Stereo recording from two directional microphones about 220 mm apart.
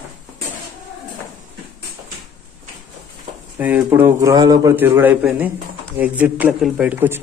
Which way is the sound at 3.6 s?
10° right (ahead or behind).